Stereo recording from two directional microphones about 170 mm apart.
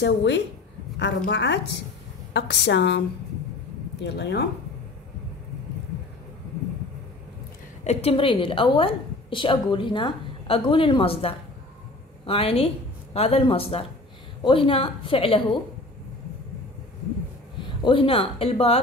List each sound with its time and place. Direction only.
0.0 s a woman's voice: 90° left
4.0 s speech: 85° left
7.8 s a woman's voice: 35° left (ahead or behind)
17.6 s speech: 30° left (ahead or behind)